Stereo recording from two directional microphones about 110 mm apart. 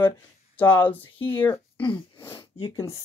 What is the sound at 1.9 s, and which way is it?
Wheeze, 20° left (ahead or behind).